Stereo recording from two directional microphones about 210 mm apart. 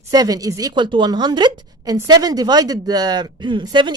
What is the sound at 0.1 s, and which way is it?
A woman's voice, 15° right (ahead or behind).